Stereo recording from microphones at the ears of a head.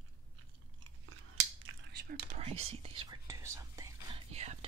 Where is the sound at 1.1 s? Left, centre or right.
Right.